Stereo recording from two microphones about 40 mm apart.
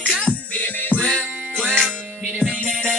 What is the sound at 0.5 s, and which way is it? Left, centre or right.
Music, left.